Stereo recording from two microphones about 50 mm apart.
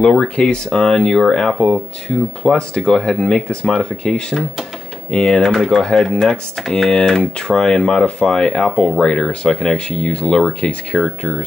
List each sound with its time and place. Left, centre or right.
0.0 s speech: left
10.9 s speech: centre